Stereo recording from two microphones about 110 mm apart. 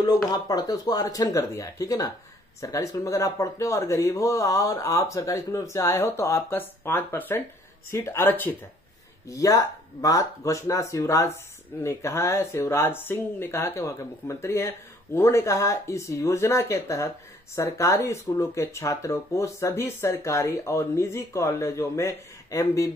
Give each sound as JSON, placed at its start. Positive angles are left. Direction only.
{"t": 0.0, "sound": "speech", "side_deg": 35}
{"t": 9.3, "sound": "speech", "side_deg": 30}